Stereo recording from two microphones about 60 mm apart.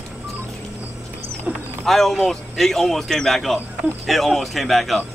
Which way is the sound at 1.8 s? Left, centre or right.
Centre.